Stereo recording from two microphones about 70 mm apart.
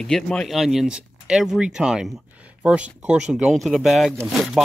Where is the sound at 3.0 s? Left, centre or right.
Centre.